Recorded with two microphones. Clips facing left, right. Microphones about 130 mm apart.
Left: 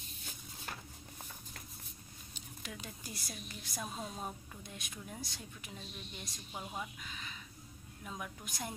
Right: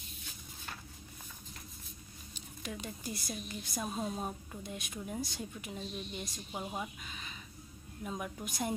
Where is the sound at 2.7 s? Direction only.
Centre (ahead or behind).